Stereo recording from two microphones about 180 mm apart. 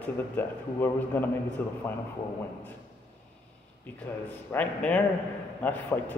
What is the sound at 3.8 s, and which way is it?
A man's voice, 10° left (ahead or behind).